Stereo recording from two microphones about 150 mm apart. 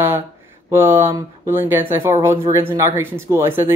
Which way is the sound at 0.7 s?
15° right (ahead or behind).